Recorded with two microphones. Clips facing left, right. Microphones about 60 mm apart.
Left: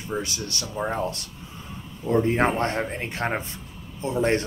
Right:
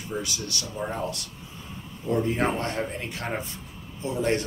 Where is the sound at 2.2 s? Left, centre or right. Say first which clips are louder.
Left 4 dB; left.